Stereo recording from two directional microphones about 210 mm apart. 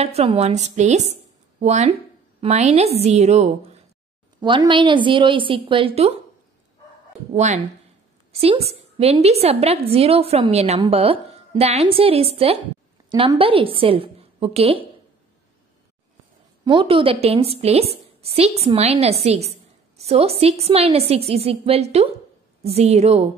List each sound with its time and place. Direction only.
0.0 s a woman's voice: 30° right (ahead or behind)
4.4 s a woman's voice: 20° right (ahead or behind)
7.3 s a woman's voice: 35° right (ahead or behind)
16.6 s a woman's voice: 25° right (ahead or behind)